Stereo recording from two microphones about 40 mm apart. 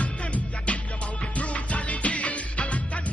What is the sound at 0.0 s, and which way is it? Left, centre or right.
Music, left.